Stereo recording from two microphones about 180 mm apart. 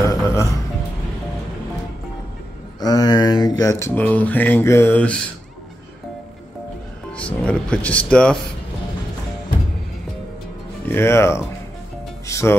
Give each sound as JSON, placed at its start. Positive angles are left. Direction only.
{"t": 0.0, "sound": "music", "side_deg": 15}
{"t": 2.8, "sound": "speech", "side_deg": 20}
{"t": 7.1, "sound": "music", "side_deg": 5}
{"t": 10.9, "sound": "speech", "side_deg": 15}
{"t": 12.3, "sound": "music", "side_deg": 15}